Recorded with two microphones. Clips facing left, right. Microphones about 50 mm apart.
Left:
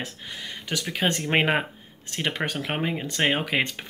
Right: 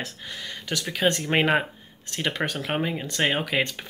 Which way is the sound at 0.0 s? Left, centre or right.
Left.